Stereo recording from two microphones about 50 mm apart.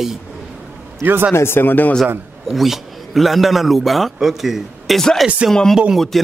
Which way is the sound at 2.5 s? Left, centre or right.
Centre.